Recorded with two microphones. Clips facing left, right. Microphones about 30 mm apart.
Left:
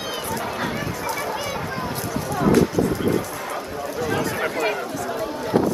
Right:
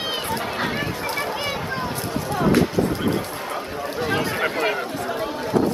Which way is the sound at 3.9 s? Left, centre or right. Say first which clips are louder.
Right 1 dB; right.